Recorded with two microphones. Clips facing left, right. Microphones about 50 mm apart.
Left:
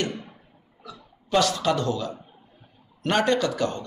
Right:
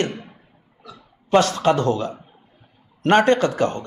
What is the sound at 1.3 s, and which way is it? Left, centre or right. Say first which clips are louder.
Speech: right 5 dB; right.